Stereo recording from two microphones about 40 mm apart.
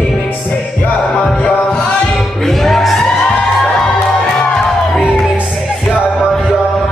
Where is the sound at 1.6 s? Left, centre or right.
Left.